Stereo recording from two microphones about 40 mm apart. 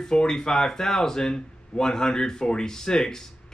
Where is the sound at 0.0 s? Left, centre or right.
Centre.